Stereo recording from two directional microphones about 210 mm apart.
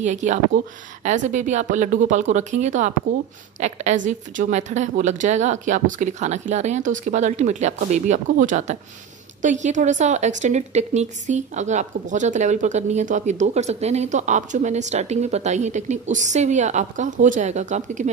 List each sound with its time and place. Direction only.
0.0 s a woman's voice: 35° right (ahead or behind)